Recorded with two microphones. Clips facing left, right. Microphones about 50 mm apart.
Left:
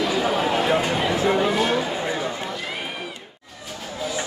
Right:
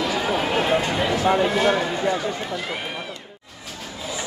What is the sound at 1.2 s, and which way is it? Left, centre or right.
Speech, centre.